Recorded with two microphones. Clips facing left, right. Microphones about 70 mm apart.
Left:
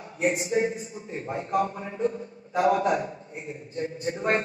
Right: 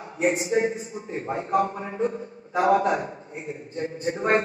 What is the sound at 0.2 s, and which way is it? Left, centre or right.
A man's voice, right.